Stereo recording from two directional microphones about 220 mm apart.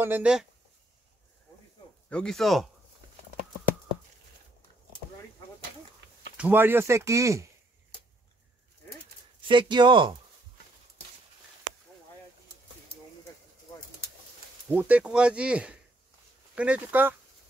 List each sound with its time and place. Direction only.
0.0 s speech: 5° right (ahead or behind)
2.0 s speech: 5° left (ahead or behind)
6.3 s speech: 10° right (ahead or behind)
9.5 s speech: 20° right (ahead or behind)
14.7 s speech: 5° right (ahead or behind)